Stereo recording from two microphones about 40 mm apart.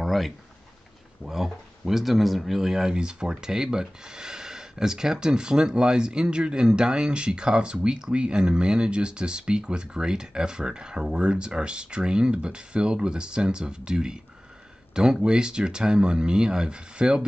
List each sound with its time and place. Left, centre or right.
0.0 s a sound: centre
1.2 s speech: centre
15.2 s speech: centre